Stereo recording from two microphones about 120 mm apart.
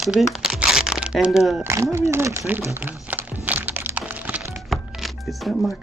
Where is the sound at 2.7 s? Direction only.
15° right (ahead or behind).